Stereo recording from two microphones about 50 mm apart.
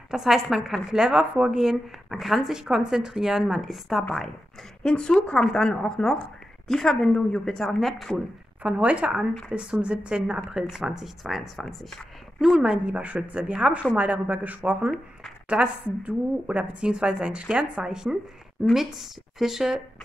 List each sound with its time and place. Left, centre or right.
0.1 s a woman's voice: centre
0.9 s speech: centre
1.6 s speech: centre
4.8 s a woman's voice: centre
8.6 s a woman's voice: right; by 11.9 s centre
12.4 s a woman's voice: centre; by 14.9 s right
15.4 s a woman's voice: right